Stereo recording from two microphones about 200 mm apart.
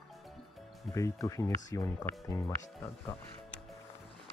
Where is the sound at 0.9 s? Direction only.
15° left (ahead or behind).